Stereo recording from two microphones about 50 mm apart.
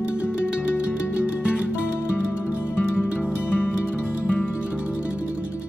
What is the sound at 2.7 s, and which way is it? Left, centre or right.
Music, left.